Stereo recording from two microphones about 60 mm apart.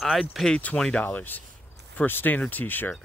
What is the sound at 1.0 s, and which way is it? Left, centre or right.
Speech, left.